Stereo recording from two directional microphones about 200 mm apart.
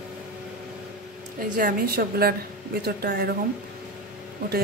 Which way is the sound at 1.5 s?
45° right (ahead or behind).